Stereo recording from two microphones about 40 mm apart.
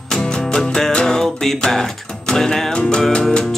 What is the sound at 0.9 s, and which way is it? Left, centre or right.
Music, left.